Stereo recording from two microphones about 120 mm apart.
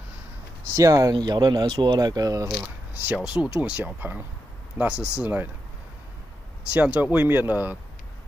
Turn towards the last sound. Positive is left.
turn(degrees=-15)  # may be behind; listen again after turning